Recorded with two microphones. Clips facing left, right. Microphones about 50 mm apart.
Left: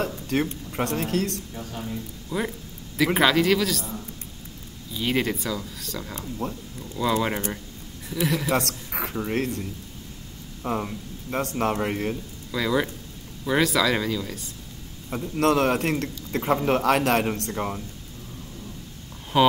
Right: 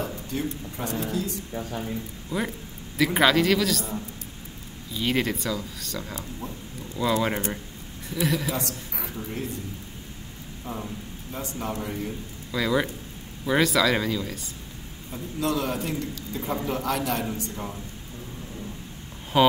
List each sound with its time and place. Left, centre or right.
0.0 s speech: left
2.2 s speech: centre
4.9 s speech: centre
6.4 s a man's voice: left
7.0 s speech: centre
8.5 s a woman's voice: left
10.6 s a man's voice: left
12.4 s speech: centre
15.0 s a man's voice: left
19.3 s speech: centre